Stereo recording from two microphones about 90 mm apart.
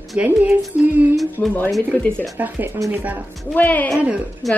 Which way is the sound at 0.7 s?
15° right (ahead or behind).